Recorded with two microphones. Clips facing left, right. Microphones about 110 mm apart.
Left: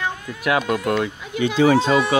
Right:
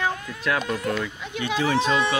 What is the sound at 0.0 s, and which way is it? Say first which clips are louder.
Run: left 1 dB; 5° left (ahead or behind).